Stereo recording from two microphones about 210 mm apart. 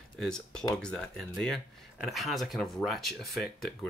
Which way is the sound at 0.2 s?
5° left (ahead or behind).